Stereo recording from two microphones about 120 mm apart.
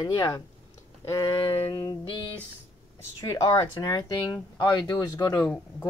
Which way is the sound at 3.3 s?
30° left (ahead or behind).